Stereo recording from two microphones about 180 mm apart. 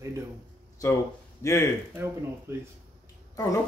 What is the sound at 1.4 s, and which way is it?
Speech, 15° left (ahead or behind).